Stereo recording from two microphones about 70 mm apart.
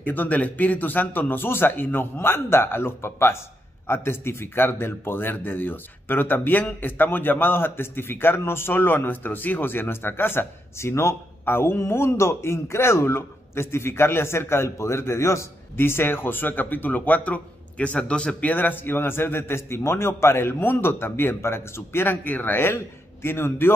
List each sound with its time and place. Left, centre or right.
0.0 s a man's voice: left